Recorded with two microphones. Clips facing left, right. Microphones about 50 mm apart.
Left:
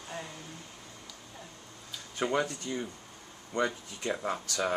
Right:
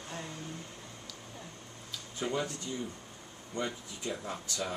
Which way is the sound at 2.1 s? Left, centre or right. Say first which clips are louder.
Left 4 dB; left.